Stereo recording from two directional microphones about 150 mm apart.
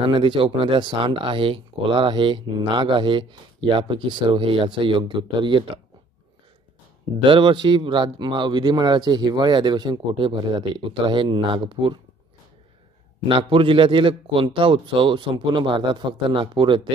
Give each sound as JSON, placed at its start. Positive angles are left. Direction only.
{"t": 0.1, "sound": "speech", "side_deg": -35}
{"t": 7.2, "sound": "speech", "side_deg": -35}
{"t": 13.4, "sound": "speech", "side_deg": -35}